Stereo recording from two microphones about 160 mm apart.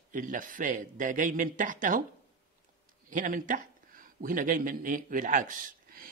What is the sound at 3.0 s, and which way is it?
A man's voice, 55° right (ahead or behind).